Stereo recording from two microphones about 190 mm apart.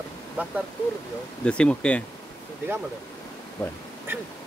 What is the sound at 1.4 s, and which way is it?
Speech, 5° left (ahead or behind).